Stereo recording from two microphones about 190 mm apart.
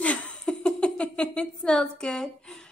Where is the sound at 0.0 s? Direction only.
5° left (ahead or behind).